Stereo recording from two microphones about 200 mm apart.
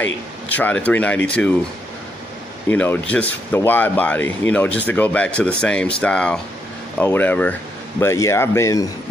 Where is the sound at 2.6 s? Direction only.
10° left (ahead or behind).